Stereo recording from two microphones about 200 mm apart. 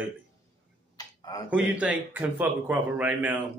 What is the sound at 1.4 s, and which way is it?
A man's voice, 5° right (ahead or behind).